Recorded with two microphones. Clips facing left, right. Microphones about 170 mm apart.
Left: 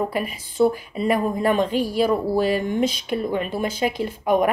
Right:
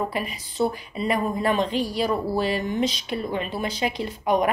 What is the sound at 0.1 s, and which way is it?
Speech, 45° left (ahead or behind).